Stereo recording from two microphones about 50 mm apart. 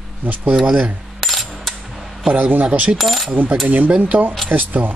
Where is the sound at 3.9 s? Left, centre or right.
Right.